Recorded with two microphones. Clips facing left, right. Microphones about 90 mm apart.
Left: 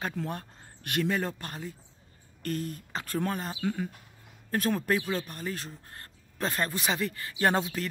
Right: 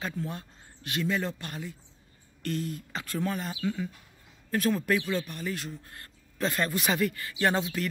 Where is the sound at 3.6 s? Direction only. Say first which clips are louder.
Even; 50° left (ahead or behind).